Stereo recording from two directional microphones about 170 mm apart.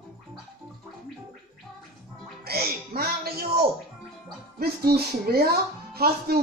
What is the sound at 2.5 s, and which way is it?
Speech, 65° right (ahead or behind).